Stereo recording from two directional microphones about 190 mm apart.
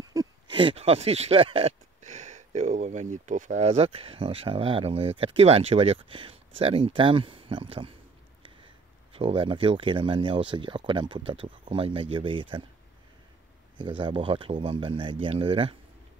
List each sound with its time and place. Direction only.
0.0 s speech: 20° right (ahead or behind)
9.1 s speech: 30° right (ahead or behind)
13.7 s speech: 25° right (ahead or behind)